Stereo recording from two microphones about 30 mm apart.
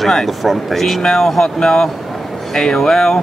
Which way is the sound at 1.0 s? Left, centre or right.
Left.